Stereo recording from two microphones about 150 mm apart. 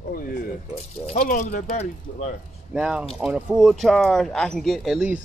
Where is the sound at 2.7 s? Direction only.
5° right (ahead or behind).